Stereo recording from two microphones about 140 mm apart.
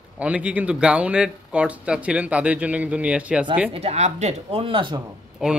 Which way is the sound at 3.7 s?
50° right (ahead or behind).